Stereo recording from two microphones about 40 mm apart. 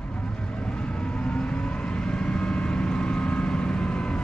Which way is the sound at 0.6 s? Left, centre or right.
Left.